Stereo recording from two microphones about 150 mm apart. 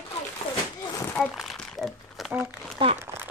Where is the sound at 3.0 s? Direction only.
15° right (ahead or behind).